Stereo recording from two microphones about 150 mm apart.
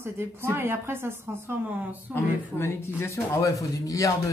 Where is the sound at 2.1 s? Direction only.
15° left (ahead or behind).